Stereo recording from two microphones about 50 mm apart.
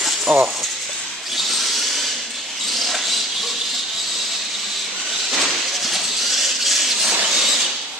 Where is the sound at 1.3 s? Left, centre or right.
Centre.